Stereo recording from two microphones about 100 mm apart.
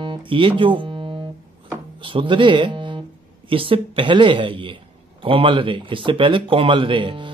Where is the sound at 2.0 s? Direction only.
55° right (ahead or behind).